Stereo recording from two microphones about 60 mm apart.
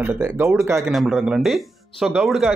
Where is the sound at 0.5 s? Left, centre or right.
Right.